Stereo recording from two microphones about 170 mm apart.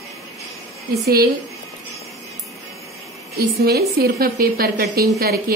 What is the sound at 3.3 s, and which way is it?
A woman's voice, 70° right (ahead or behind).